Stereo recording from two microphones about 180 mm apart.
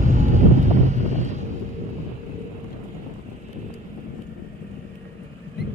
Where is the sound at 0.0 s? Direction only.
40° right (ahead or behind).